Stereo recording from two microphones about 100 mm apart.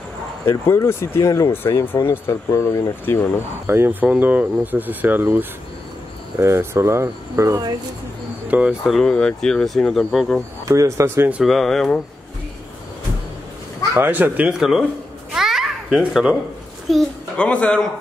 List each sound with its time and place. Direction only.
0.5 s speech: 25° left (ahead or behind)
3.6 s speech: 25° right (ahead or behind)
8.5 s speech: 10° right (ahead or behind)
8.9 s speech: 5° left (ahead or behind)
10.6 s speech: 30° right (ahead or behind)
11.4 s speech: centre (ahead or behind)
13.9 s speech: 20° right (ahead or behind)
15.3 s babbling: 5° right (ahead or behind)
16.9 s a man's voice: 5° left (ahead or behind)